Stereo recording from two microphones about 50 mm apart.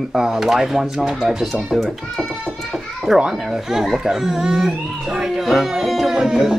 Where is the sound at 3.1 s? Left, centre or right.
Centre.